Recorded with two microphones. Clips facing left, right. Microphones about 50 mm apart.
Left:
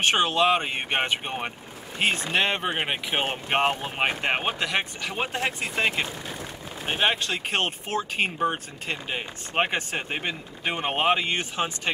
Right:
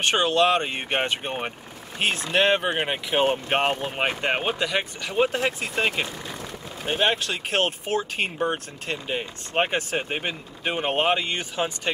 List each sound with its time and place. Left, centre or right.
0.0 s speech: centre
2.9 s speech: centre
3.4 s speech: centre
9.6 s speech: centre
10.9 s speech: centre
11.2 s speech: centre